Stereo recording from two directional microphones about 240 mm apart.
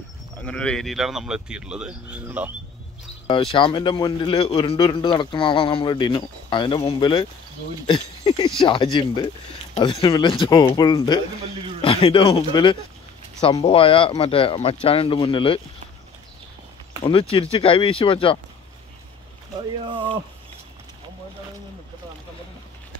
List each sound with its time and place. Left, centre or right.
0.5 s speech: centre
3.3 s speech: left
17.0 s speech: left
19.8 s speech: right